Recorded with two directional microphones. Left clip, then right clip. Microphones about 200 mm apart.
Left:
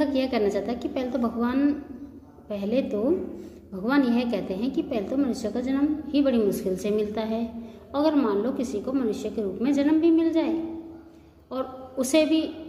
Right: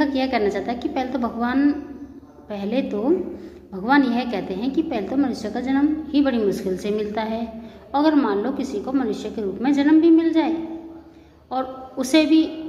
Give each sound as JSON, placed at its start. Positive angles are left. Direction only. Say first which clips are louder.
{"t": 0.0, "sound": "a woman's voice", "louder": "right 3 dB", "side_deg": 10}
{"t": 11.5, "sound": "a woman's voice", "louder": "right 4 dB", "side_deg": 10}